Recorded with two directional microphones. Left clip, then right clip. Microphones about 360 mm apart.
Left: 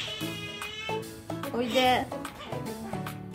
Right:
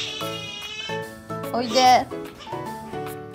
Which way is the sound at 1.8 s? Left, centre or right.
Centre.